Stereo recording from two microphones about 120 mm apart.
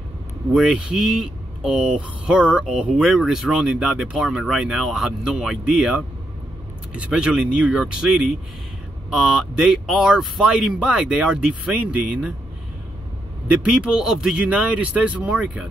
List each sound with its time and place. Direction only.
0.6 s speech: 5° right (ahead or behind)
13.5 s speech: 10° right (ahead or behind)